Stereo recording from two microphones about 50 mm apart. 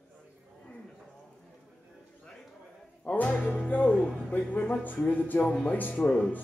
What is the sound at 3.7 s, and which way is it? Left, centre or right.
Speech, left.